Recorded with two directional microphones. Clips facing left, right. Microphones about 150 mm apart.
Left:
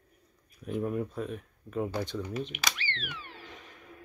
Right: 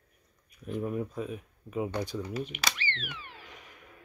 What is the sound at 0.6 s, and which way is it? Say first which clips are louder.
Speech: left 1 dB; centre (ahead or behind).